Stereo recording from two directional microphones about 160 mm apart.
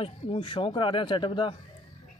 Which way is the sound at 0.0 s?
35° left (ahead or behind).